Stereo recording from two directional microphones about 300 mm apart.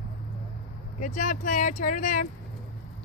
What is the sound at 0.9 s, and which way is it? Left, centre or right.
Speech, left.